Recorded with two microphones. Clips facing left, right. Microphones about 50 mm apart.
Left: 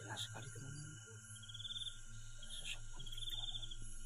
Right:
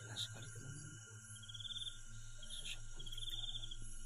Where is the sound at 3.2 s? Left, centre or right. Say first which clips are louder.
Left 1 dB; centre.